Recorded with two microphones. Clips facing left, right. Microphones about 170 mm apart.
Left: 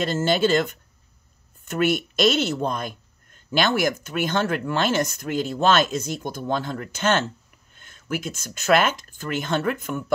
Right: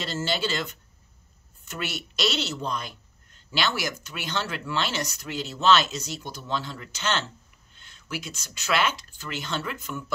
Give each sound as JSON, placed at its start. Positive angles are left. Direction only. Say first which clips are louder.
{"t": 0.0, "sound": "speech", "louder": "left 8 dB", "side_deg": 50}